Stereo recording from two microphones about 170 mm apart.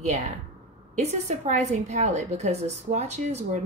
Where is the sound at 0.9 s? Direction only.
45° right (ahead or behind).